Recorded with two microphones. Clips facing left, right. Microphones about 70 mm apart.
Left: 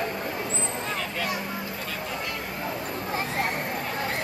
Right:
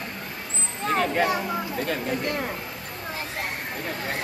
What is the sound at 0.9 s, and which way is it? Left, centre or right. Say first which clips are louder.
Vehicle: right 8 dB; right.